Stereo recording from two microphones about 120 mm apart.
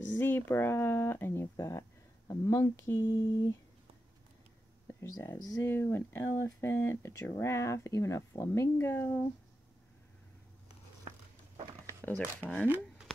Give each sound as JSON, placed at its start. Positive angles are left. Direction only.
{"t": 0.1, "sound": "speech", "side_deg": 15}
{"t": 4.8, "sound": "speech", "side_deg": 20}
{"t": 12.6, "sound": "speech", "side_deg": -15}